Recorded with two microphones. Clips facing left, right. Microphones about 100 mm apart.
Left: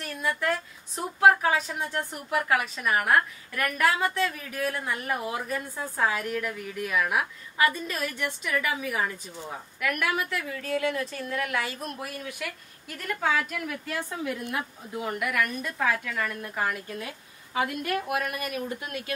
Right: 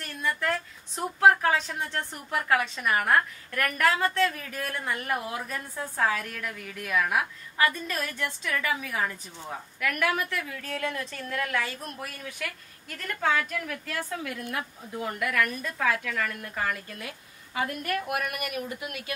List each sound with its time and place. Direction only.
0.0 s a woman's voice: 10° left (ahead or behind)
9.8 s a woman's voice: 5° left (ahead or behind); by 19.1 s 30° left (ahead or behind)